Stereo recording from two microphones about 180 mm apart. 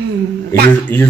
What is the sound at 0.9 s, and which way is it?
Speech, 10° left (ahead or behind).